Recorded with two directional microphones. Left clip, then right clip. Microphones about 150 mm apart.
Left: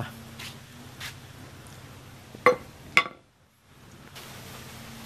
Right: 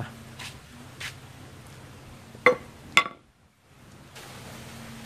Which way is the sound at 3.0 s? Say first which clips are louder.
Right 1 dB; centre (ahead or behind).